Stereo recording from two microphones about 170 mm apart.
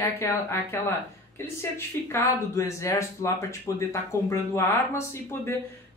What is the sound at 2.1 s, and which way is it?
Speech, 15° left (ahead or behind).